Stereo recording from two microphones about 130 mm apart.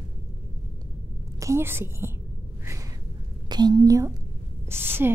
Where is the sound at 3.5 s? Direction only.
30° right (ahead or behind).